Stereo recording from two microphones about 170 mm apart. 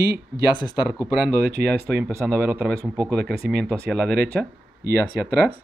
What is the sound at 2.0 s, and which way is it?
Speech, 10° right (ahead or behind).